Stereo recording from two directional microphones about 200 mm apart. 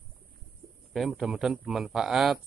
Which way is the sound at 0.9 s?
Centre (ahead or behind).